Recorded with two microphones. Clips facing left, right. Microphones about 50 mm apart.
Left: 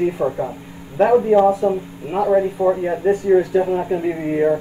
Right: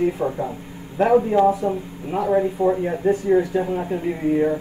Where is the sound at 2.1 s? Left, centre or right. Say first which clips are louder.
Left 3 dB; centre.